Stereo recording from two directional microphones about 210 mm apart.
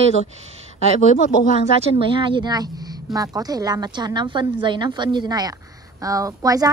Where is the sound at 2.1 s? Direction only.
25° right (ahead or behind).